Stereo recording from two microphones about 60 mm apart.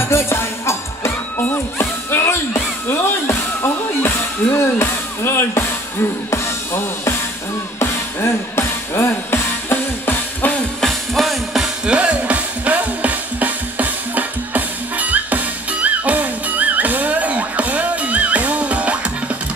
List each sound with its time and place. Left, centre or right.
0.0 s music: left
1.4 s a sound: left
6.3 s music: left
10.8 s music: centre; by 19.3 s right